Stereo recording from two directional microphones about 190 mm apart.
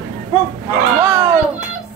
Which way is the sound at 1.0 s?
20° right (ahead or behind).